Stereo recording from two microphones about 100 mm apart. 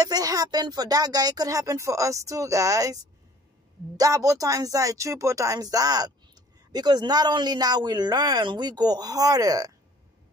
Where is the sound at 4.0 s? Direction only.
35° right (ahead or behind).